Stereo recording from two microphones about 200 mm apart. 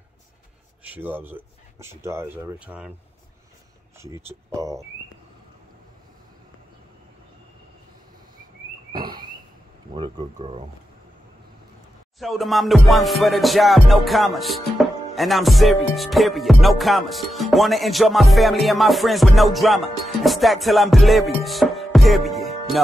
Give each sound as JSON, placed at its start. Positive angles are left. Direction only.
{"t": 0.9, "sound": "speech", "side_deg": -10}
{"t": 4.0, "sound": "speech", "side_deg": -15}
{"t": 8.9, "sound": "a sound", "side_deg": -20}
{"t": 9.9, "sound": "speech", "side_deg": -25}
{"t": 12.2, "sound": "music", "side_deg": 0}